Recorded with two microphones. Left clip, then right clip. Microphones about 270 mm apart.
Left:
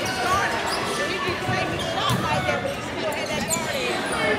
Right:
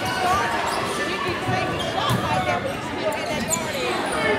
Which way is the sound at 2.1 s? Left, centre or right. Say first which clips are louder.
Right 1 dB; right.